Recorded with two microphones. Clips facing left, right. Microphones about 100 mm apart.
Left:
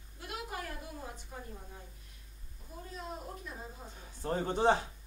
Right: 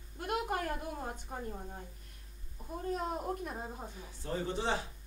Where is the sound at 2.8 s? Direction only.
50° right (ahead or behind).